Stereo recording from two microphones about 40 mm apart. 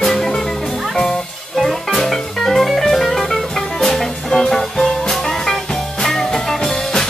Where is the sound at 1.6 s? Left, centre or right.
Centre.